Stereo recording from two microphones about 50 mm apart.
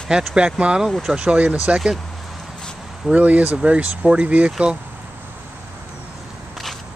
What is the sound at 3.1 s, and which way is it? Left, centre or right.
Speech, right.